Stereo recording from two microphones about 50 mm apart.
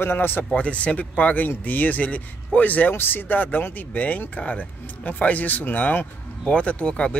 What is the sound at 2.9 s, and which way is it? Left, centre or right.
Speech, left.